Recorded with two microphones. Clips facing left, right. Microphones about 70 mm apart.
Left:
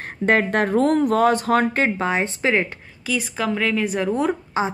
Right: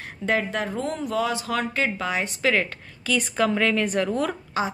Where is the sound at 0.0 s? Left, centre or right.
Left.